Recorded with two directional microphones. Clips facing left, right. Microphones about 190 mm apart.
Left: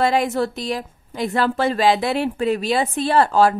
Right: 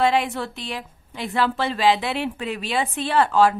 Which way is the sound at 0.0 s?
40° left (ahead or behind).